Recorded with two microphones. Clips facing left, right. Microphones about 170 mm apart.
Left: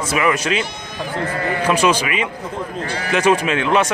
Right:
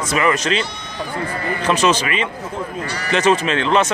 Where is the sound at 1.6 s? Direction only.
10° left (ahead or behind).